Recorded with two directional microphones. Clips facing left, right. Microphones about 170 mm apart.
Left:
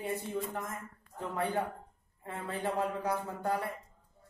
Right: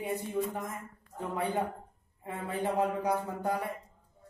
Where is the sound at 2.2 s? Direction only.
15° right (ahead or behind).